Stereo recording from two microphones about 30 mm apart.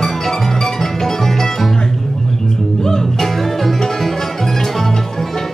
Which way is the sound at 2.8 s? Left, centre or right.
Centre.